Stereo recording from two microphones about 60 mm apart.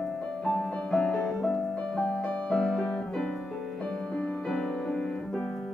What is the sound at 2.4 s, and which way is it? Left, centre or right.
Music, centre.